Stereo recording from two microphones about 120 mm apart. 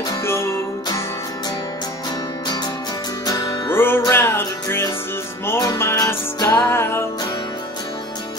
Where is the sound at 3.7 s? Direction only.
20° left (ahead or behind).